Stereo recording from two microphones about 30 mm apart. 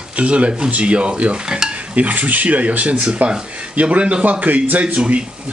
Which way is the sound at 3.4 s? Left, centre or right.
Right.